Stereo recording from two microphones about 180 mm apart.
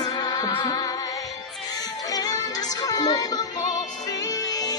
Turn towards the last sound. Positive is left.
turn(degrees=20)  # may be behind; listen again after turning